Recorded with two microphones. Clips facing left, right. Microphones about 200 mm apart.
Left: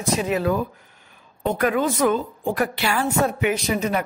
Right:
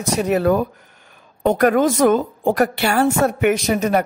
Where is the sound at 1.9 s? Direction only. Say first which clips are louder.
Right 5 dB; 45° right (ahead or behind).